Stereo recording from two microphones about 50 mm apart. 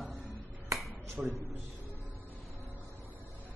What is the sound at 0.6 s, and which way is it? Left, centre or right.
Finger snapping, right.